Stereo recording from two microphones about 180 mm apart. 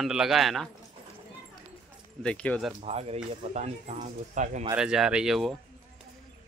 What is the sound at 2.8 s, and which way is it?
Speech, 35° right (ahead or behind).